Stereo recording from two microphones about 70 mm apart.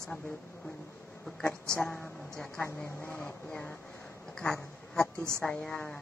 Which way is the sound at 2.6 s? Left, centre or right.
Left.